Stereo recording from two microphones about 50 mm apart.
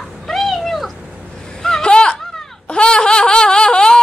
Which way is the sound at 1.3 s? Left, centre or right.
Centre.